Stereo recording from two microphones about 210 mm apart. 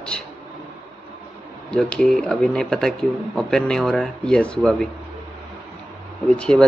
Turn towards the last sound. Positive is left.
turn(degrees=5)  # may be behind; listen again after turning